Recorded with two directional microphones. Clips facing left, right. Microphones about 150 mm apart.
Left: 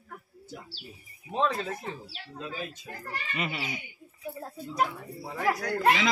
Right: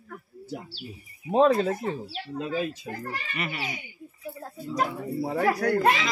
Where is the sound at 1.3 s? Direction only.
45° right (ahead or behind).